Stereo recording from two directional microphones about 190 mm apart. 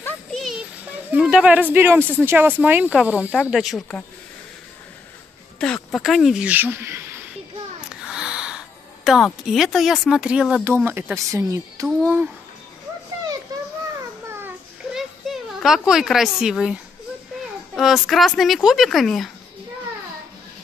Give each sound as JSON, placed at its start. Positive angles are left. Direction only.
{"t": 0.0, "sound": "music", "side_deg": 0}
{"t": 1.1, "sound": "speech", "side_deg": -5}
{"t": 5.6, "sound": "speech", "side_deg": 5}
{"t": 13.5, "sound": "children playing", "side_deg": -20}
{"t": 14.4, "sound": "children playing", "side_deg": 0}
{"t": 17.7, "sound": "speech", "side_deg": 0}